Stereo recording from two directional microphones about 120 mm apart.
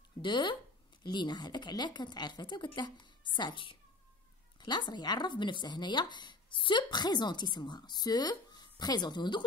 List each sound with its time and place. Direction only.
0.2 s speech: 40° left (ahead or behind)